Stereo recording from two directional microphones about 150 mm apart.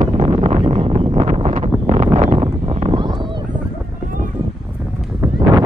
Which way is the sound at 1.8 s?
50° right (ahead or behind).